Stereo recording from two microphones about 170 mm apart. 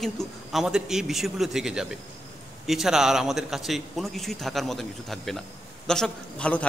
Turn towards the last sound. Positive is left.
turn(degrees=5)  # may be behind; listen again after turning